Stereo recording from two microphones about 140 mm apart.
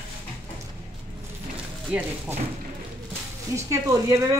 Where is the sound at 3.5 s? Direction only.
25° right (ahead or behind).